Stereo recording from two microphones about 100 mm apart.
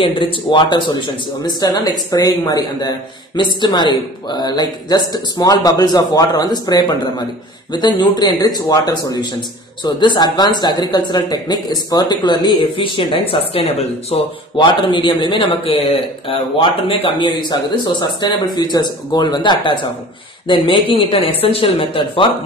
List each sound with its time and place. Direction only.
0.0 s speech: 55° left (ahead or behind)
1.4 s speech: 40° left (ahead or behind); by 14.3 s 75° left (ahead or behind)
14.6 s speech: 50° left (ahead or behind)